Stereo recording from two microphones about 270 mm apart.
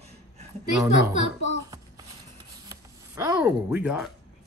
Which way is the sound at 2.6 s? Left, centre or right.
Centre.